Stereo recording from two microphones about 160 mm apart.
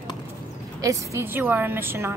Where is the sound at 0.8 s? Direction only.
20° right (ahead or behind).